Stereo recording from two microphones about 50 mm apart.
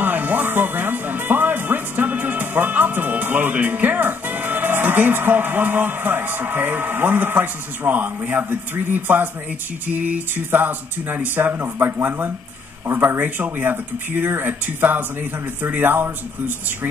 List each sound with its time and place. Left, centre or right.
0.0 s speech: right